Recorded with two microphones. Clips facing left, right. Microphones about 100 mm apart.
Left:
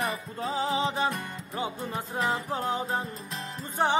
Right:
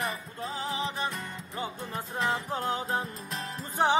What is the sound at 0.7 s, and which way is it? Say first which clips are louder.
Music: left 4 dB; 25° left (ahead or behind).